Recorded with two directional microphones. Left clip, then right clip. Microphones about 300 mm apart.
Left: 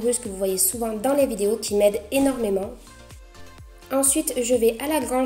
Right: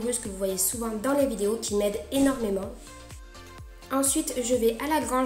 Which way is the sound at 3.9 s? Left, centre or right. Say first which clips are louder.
Left 4 dB; centre.